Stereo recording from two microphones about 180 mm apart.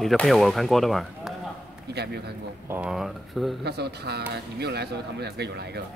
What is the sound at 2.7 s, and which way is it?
Speech, 5° right (ahead or behind).